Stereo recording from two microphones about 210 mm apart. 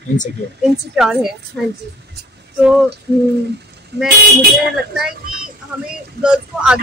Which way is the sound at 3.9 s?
50° right (ahead or behind).